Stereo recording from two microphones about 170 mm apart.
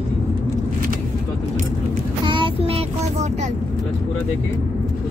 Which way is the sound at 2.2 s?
30° right (ahead or behind).